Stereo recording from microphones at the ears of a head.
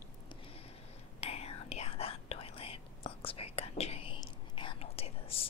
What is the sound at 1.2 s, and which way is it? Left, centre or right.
Whispering, left.